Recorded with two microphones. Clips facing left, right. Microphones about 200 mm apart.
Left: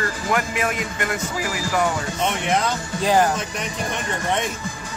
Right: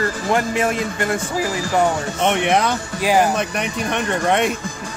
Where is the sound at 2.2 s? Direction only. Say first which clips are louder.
Right 5 dB; 65° right (ahead or behind).